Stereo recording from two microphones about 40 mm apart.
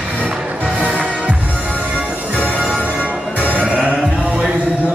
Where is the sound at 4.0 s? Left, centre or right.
Centre.